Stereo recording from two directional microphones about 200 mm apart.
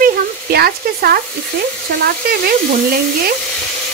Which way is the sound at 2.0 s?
50° right (ahead or behind).